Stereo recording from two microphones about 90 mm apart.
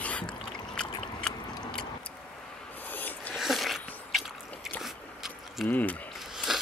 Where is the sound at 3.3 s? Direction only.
Centre (ahead or behind).